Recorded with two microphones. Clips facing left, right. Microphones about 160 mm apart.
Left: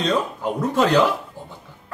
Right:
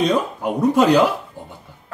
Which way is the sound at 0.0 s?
10° right (ahead or behind).